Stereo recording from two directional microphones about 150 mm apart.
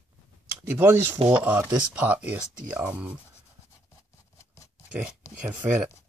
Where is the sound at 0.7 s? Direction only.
15° right (ahead or behind).